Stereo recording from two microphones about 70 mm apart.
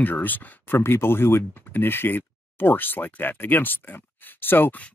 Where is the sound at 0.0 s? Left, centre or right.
Left.